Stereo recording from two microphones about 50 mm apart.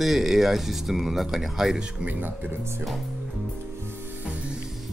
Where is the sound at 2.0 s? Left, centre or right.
Right.